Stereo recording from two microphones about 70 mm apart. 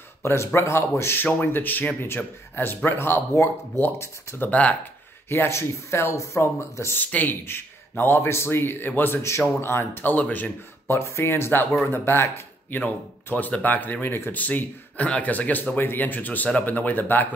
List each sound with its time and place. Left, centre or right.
0.2 s speech: left
4.5 s speech: left
5.3 s speech: left
7.0 s speech: left
10.1 s speech: left
11.0 s speech: left
12.8 s speech: left